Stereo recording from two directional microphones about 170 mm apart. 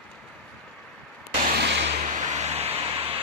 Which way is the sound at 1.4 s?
80° right.